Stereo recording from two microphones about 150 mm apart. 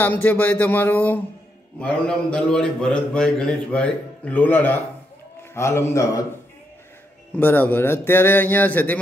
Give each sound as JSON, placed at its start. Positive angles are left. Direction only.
{"t": 0.0, "sound": "a man's voice", "side_deg": 10}
{"t": 7.3, "sound": "a man's voice", "side_deg": 15}